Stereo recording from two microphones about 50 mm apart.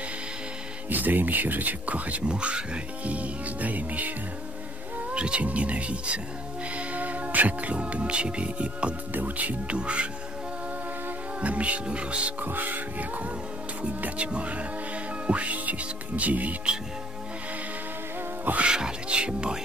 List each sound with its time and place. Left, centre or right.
0.8 s speech: right
2.3 s speech: centre
5.1 s speech: right
9.1 s speech: right
9.8 s speech: right
11.4 s speech: right
12.4 s speech: right
18.6 s speech: centre